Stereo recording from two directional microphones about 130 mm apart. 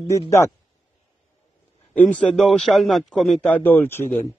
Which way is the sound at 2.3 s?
Centre (ahead or behind).